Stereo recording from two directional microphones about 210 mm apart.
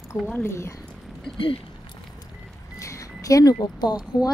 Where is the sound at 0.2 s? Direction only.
5° left (ahead or behind).